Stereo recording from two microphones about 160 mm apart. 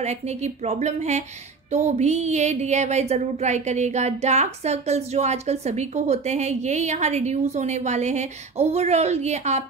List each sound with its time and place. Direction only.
0.0 s speech: 45° right (ahead or behind)